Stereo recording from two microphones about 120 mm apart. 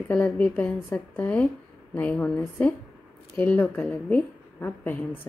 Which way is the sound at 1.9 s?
15° left (ahead or behind).